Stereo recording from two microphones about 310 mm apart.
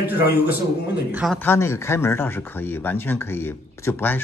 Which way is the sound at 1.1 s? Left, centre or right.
Centre.